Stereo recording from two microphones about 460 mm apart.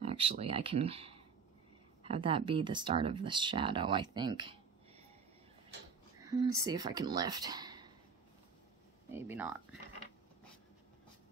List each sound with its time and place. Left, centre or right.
0.0 s speech: centre
6.2 s speech: centre
9.1 s speech: centre